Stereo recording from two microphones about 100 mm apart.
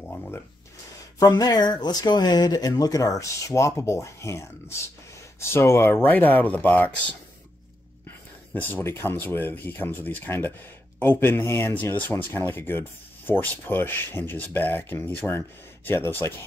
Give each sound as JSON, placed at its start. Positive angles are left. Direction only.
{"t": 0.0, "sound": "a sound", "side_deg": 15}
{"t": 1.2, "sound": "speech", "side_deg": 40}
{"t": 8.5, "sound": "speech", "side_deg": 20}